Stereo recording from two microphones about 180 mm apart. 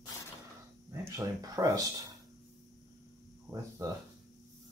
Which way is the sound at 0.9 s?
15° right (ahead or behind).